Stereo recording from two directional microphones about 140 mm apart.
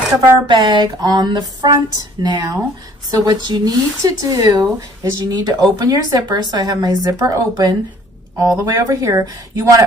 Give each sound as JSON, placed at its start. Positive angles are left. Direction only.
{"t": 0.5, "sound": "a woman's voice", "side_deg": -30}